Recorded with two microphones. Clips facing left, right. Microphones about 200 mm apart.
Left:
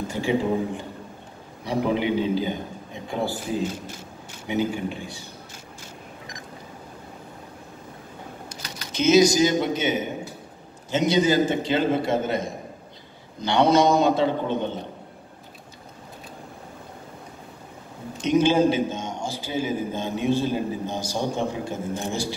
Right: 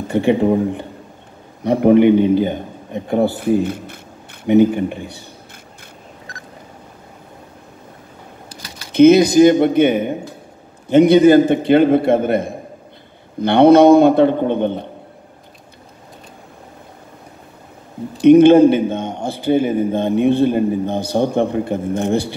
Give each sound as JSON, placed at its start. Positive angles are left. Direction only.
{"t": 0.1, "sound": "a man's voice", "side_deg": -60}
{"t": 8.9, "sound": "a man's voice", "side_deg": -60}
{"t": 18.2, "sound": "a man's voice", "side_deg": -60}